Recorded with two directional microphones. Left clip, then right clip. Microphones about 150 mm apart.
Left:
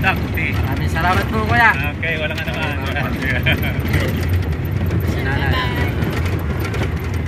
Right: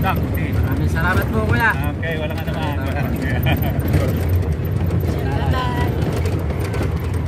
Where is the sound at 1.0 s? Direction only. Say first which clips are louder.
Left 3 dB; 10° left (ahead or behind).